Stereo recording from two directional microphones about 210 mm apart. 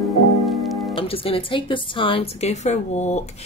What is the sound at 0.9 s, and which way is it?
Speech, 25° left (ahead or behind).